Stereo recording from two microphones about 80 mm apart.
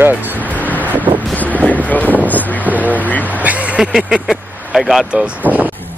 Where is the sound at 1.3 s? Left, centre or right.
Centre.